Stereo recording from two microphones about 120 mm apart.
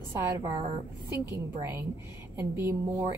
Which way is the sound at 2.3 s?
20° right (ahead or behind).